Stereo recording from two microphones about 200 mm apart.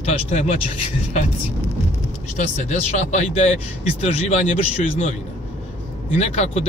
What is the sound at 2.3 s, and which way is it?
Speech, 35° left (ahead or behind).